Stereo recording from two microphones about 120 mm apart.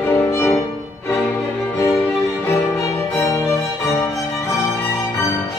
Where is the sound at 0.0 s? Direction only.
20° left (ahead or behind).